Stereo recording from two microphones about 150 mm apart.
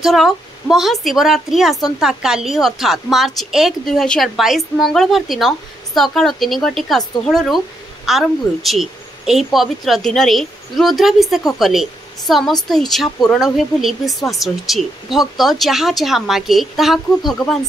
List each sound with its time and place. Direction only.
0.0 s a woman's voice: centre (ahead or behind)